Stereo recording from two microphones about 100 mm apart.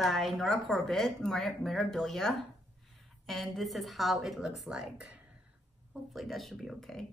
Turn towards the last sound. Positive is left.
turn(degrees=5)  # may be behind; listen again after turning